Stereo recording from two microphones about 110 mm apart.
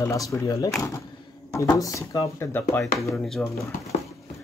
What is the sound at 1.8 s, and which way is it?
Speech, 30° left (ahead or behind).